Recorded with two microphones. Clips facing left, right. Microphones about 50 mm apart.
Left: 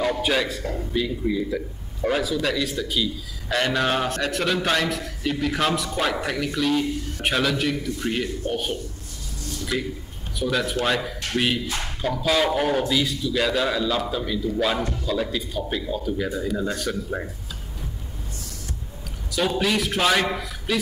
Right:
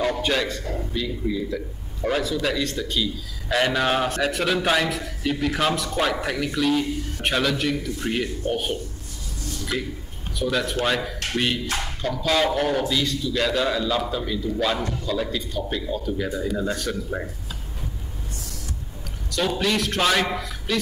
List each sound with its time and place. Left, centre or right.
0.0 s a man's voice: centre
10.4 s a man's voice: centre
19.3 s a man's voice: centre